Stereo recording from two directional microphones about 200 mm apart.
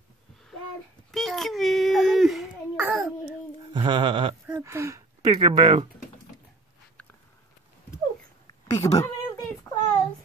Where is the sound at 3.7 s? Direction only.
25° right (ahead or behind).